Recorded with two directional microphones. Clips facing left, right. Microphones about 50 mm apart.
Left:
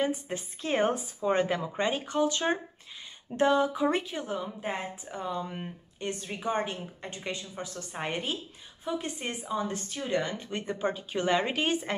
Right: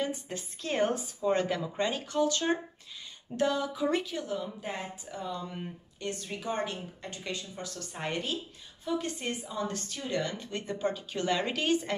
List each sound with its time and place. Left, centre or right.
0.0 s speech: left